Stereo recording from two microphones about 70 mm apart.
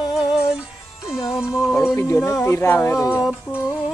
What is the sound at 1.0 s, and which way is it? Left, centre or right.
Speech, centre.